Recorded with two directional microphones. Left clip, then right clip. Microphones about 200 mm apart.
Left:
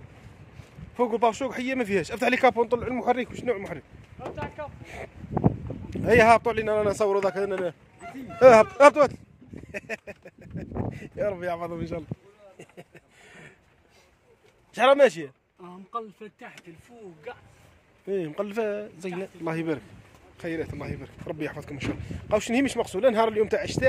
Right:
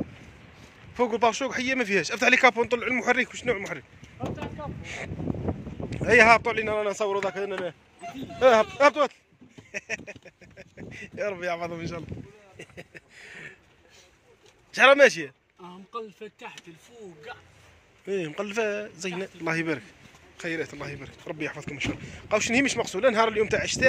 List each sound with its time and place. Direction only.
0.9 s speech: 10° left (ahead or behind)
4.2 s a sound: 50° right (ahead or behind)
4.8 s a man's voice: 10° left (ahead or behind)
12.5 s a sound: 5° right (ahead or behind)
14.7 s speech: 10° left (ahead or behind)
18.0 s speech: 10° left (ahead or behind)